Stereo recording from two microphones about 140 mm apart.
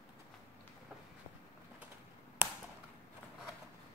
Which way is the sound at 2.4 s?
15° right (ahead or behind).